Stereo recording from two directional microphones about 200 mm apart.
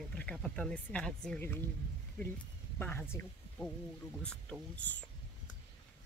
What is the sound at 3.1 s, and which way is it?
Speech, 10° left (ahead or behind).